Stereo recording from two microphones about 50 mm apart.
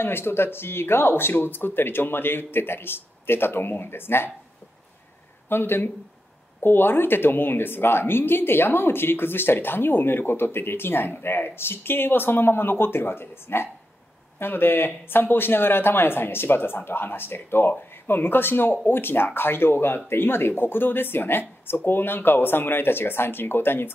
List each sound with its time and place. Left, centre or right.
0.0 s speech: left
5.5 s speech: left